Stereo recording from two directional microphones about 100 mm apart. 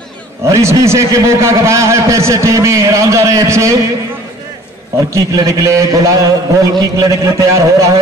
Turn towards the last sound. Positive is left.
turn(degrees=-30)  # may be behind; listen again after turning